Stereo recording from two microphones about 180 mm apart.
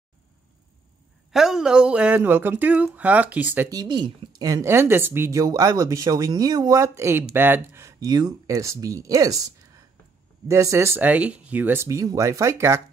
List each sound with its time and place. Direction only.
1.3 s speech: centre (ahead or behind)
3.7 s speech: 25° right (ahead or behind)
10.5 s speech: 15° right (ahead or behind)